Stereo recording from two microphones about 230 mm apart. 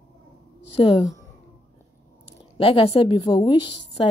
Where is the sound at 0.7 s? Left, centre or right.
Left.